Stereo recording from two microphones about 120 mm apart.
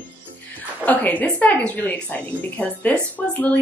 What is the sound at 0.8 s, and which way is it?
A woman's voice, 15° left (ahead or behind).